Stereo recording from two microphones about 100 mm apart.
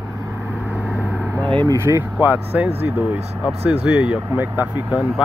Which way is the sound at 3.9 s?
10° right (ahead or behind).